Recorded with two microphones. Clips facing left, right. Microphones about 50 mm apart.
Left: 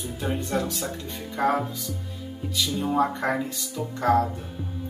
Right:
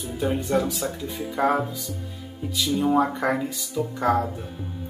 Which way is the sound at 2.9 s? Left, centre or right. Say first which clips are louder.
Right 2 dB; centre.